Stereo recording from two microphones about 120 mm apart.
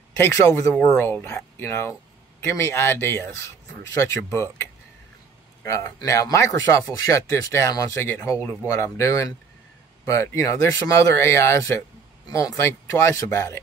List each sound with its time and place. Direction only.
0.2 s speech: 25° left (ahead or behind)
5.6 s speech: 25° left (ahead or behind)